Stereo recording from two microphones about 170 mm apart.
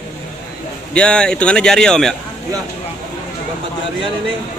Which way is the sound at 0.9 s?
5° left (ahead or behind).